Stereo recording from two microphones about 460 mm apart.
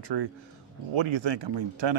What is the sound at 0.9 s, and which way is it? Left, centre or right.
Speech, right.